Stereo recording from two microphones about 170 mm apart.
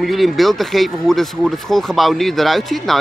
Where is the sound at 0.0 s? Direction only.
Centre (ahead or behind).